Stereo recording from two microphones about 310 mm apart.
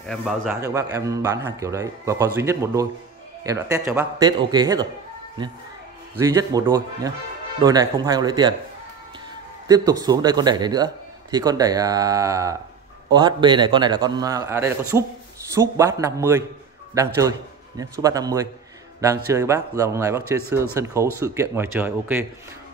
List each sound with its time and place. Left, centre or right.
0.0 s a man's voice: centre
6.1 s a man's voice: centre
9.7 s a man's voice: centre